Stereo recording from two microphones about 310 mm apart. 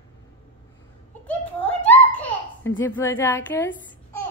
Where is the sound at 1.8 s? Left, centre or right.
Centre.